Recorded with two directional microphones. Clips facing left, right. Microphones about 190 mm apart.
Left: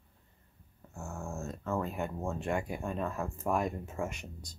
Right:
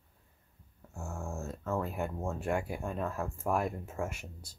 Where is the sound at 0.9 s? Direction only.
10° right (ahead or behind).